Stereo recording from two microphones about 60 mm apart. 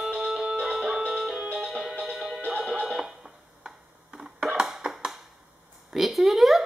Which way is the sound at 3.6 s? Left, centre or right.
Centre.